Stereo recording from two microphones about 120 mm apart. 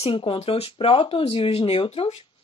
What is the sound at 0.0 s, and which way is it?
Speech, 45° left (ahead or behind).